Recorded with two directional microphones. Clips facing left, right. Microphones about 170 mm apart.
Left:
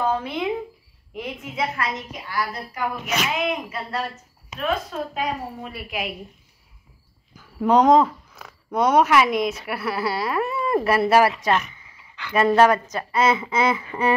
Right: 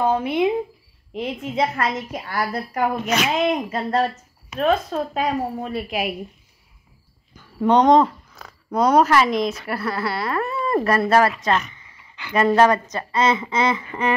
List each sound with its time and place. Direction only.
0.0 s a woman's voice: 25° right (ahead or behind)
1.8 s a woman's voice: 55° right (ahead or behind)
3.3 s a woman's voice: 40° right (ahead or behind)
5.7 s a woman's voice: 30° right (ahead or behind)
7.3 s speech: 5° left (ahead or behind)